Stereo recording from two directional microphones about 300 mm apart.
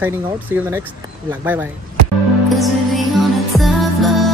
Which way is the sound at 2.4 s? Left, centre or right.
Centre.